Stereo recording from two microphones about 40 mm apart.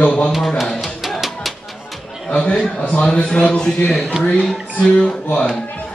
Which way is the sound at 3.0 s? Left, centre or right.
Left.